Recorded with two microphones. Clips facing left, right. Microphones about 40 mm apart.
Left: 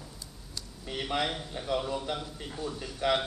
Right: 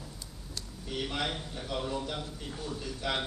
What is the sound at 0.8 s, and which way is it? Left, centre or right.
Speech, left.